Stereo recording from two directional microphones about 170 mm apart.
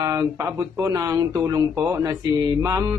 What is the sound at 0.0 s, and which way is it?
A man's voice, 15° right (ahead or behind).